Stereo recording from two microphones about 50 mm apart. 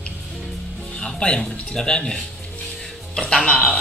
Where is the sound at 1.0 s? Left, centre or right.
Centre.